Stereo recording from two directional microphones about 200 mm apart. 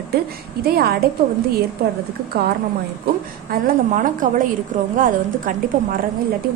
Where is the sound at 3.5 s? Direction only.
45° right (ahead or behind).